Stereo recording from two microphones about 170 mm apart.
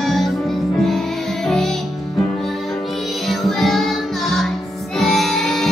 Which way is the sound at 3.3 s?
Centre (ahead or behind).